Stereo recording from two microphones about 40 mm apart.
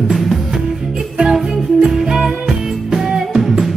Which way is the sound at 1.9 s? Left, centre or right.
Centre.